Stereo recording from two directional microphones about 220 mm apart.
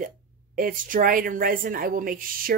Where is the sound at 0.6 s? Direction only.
40° right (ahead or behind).